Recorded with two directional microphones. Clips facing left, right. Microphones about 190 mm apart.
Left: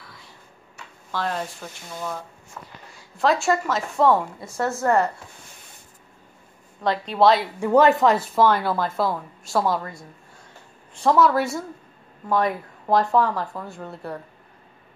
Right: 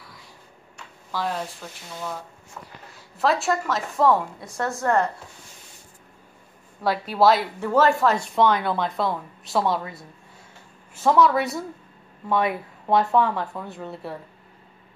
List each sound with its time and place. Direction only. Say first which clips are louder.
1.1 s a woman's voice: left 1 dB; 5° right (ahead or behind)
3.2 s a woman's voice: left 2 dB; centre (ahead or behind)
6.8 s a woman's voice: left 1 dB; 5° right (ahead or behind)
7.6 s speech: left 3 dB; 15° left (ahead or behind)
8.2 s a woman's voice: left 1 dB; 5° left (ahead or behind)